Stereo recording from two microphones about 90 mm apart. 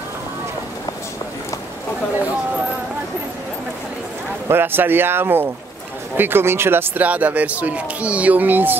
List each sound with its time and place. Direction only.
4.5 s speech: 25° right (ahead or behind)